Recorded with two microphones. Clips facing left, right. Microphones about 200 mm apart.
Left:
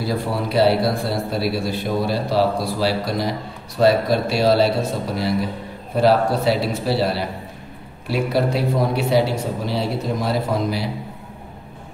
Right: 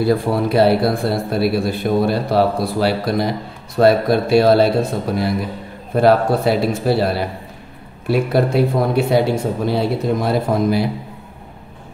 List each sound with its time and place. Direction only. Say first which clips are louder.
0.0 s a man's voice: right 7 dB; 55° right (ahead or behind)